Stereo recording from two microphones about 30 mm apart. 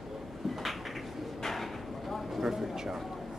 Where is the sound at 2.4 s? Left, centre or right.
Centre.